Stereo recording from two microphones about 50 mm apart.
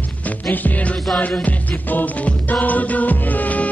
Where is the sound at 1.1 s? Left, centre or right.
Left.